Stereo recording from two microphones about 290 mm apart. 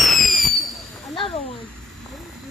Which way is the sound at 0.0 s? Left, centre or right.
Centre.